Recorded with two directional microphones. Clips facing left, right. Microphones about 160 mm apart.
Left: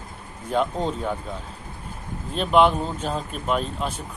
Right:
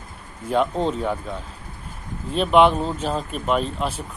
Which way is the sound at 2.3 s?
Centre (ahead or behind).